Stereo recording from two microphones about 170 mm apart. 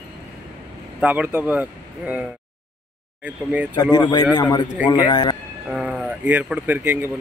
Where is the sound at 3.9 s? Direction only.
25° left (ahead or behind).